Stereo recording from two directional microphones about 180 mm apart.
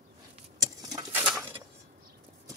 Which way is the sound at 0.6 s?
20° right (ahead or behind).